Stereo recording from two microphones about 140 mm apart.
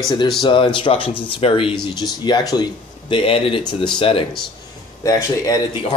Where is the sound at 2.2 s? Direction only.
30° left (ahead or behind).